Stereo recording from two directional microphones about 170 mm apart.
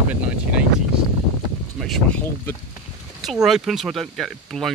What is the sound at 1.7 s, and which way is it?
Speech, centre (ahead or behind).